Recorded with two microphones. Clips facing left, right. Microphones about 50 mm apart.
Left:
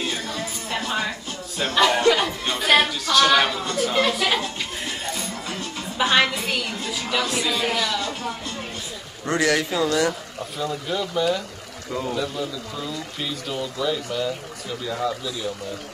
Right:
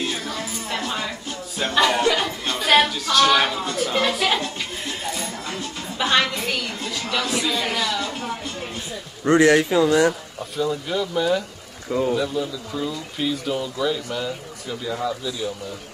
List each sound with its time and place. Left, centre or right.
1.6 s speech: centre
5.9 s a woman's voice: centre
9.2 s a man's voice: right
10.6 s speech: centre